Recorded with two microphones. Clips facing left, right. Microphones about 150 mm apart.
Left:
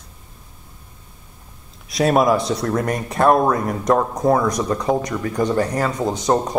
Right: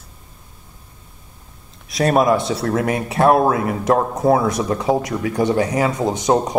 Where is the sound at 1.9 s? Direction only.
Centre (ahead or behind).